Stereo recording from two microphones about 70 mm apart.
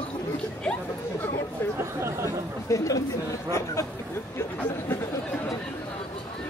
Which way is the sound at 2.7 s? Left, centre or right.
Left.